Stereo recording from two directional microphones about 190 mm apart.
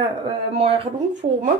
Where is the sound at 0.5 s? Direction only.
30° right (ahead or behind).